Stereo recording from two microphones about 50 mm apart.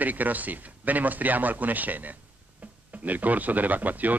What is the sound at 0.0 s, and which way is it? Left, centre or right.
A man's voice, right.